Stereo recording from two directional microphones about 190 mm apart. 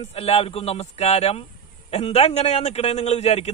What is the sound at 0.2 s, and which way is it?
A man's voice, 30° left (ahead or behind).